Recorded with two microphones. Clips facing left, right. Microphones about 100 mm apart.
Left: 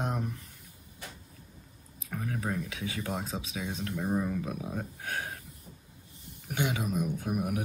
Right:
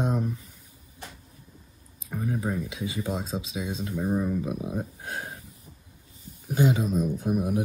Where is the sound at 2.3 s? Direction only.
15° right (ahead or behind).